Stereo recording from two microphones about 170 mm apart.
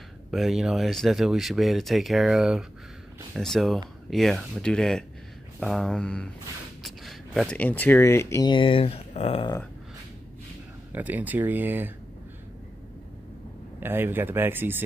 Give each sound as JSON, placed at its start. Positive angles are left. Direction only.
{"t": 0.3, "sound": "speech", "side_deg": 0}
{"t": 10.9, "sound": "speech", "side_deg": -10}
{"t": 13.7, "sound": "speech", "side_deg": -10}